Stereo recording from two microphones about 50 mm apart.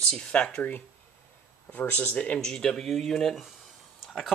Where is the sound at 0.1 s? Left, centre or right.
Left.